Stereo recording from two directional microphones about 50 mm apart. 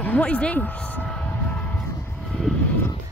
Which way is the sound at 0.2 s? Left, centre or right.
Left.